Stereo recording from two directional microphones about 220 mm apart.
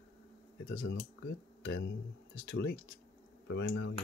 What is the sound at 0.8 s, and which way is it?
Speech, 55° left (ahead or behind).